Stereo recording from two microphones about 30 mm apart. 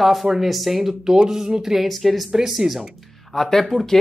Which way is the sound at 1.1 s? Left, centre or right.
Right.